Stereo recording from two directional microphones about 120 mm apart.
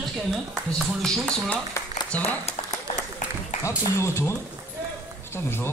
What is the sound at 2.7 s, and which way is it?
Applause, 85° left.